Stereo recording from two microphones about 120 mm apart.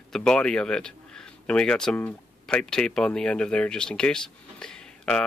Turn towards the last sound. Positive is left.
turn(degrees=5)  # may be behind; listen again after turning